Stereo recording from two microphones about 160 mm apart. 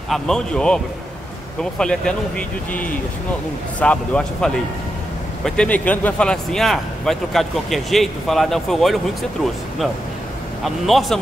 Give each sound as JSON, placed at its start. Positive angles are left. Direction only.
{"t": 0.1, "sound": "speech", "side_deg": 5}